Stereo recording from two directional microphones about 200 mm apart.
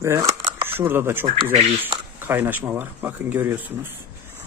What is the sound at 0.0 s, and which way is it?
Speech, 15° right (ahead or behind).